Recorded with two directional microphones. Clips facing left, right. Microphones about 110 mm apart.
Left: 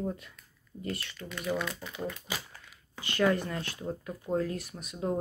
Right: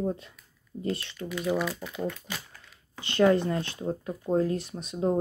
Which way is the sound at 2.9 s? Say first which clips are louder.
Right 5 dB; 25° right (ahead or behind).